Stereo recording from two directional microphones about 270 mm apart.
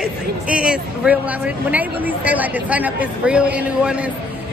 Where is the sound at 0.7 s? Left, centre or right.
Centre.